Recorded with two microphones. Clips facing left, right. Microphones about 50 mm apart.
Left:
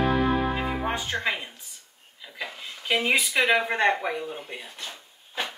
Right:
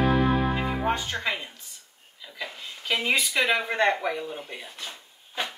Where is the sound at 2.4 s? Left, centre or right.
Centre.